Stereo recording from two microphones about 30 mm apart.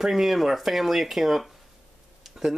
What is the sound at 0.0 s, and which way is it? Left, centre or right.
Speech, centre.